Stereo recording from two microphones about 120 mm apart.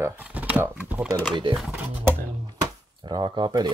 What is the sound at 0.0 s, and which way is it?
Speech, 15° right (ahead or behind).